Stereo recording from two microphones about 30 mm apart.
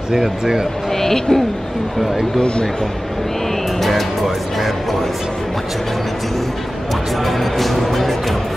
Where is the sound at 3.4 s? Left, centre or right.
Centre.